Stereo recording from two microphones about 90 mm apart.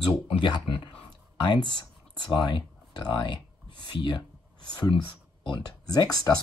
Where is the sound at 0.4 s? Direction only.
70° left (ahead or behind).